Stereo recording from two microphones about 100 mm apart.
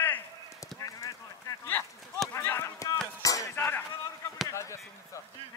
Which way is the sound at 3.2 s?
35° left (ahead or behind).